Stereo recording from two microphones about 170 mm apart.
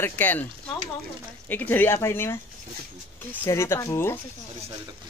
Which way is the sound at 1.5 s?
10° left (ahead or behind).